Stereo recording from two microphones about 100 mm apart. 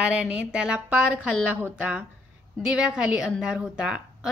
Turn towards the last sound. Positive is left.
turn(degrees=-10)  # may be behind; listen again after turning